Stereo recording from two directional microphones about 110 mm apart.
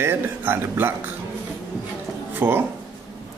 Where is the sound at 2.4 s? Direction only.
20° right (ahead or behind).